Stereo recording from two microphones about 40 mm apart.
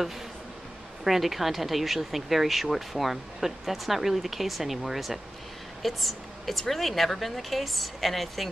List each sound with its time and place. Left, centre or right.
1.0 s a woman's voice: centre